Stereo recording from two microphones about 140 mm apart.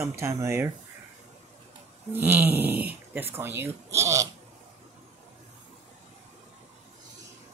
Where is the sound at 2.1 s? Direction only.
15° right (ahead or behind).